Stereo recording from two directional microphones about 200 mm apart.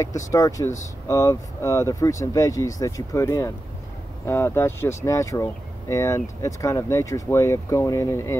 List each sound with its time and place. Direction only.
0.0 s speech: 15° left (ahead or behind)